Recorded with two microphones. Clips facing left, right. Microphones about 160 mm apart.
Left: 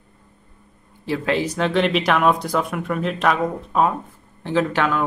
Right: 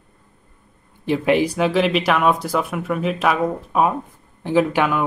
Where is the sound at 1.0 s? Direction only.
20° right (ahead or behind).